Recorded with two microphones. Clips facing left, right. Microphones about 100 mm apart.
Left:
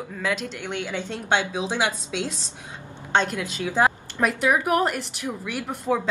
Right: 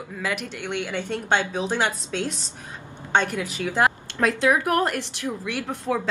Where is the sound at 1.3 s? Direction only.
15° left (ahead or behind).